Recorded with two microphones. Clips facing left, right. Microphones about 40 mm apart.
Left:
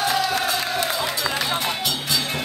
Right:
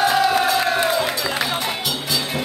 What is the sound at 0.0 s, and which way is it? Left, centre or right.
Crowd, centre.